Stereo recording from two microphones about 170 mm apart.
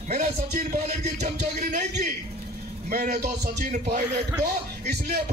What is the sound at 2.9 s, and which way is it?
Speech, 60° right (ahead or behind).